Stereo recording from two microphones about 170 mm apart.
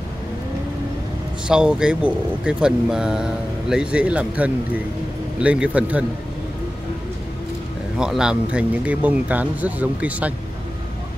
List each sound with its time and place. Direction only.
1.5 s a man's voice: 5° right (ahead or behind)
8.0 s a man's voice: 5° right (ahead or behind)